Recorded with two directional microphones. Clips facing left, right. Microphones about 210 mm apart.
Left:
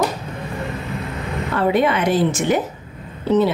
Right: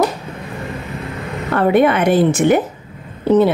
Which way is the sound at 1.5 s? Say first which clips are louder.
Right 5 dB; 55° right (ahead or behind).